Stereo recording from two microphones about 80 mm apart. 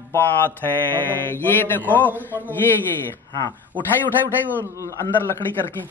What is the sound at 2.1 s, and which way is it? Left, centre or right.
Speech, right.